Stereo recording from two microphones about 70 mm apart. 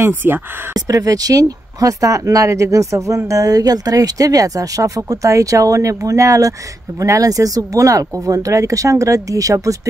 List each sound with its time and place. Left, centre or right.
0.0 s speech: right
0.7 s speech: right